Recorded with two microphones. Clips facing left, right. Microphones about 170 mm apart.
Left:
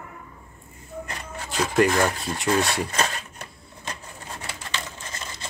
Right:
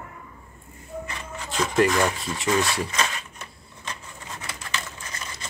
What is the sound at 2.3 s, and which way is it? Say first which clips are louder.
Speech: left 1 dB; 35° left (ahead or behind).